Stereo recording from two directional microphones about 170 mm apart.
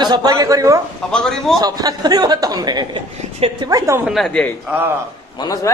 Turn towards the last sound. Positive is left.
turn(degrees=20)  # may be behind; listen again after turning